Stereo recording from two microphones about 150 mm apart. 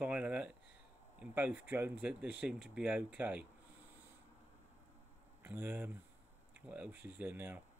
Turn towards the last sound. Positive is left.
turn(degrees=-15)  # may be behind; listen again after turning